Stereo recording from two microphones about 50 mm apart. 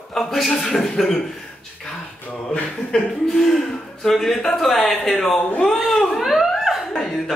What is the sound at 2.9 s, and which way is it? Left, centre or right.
Speech, centre.